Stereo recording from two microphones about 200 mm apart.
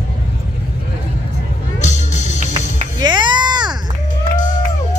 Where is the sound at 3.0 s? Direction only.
20° right (ahead or behind).